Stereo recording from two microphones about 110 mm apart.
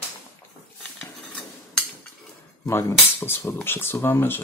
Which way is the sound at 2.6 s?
20° left (ahead or behind).